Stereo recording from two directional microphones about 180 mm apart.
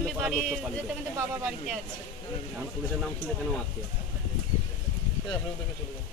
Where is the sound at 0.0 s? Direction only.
Centre (ahead or behind).